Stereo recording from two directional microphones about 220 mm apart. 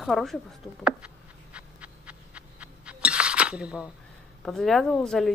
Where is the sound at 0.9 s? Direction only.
5° right (ahead or behind).